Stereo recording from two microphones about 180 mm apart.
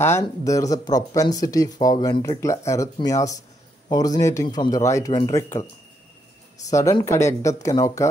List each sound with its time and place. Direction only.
0.0 s speech: 15° left (ahead or behind)
6.7 s speech: 20° left (ahead or behind)